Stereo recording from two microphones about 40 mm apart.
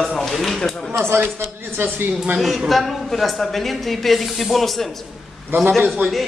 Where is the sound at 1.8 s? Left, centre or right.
Right.